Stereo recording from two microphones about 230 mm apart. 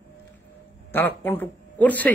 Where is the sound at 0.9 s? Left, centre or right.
Centre.